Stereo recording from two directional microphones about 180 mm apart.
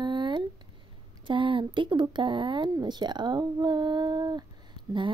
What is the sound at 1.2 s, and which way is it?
Speech, 25° right (ahead or behind).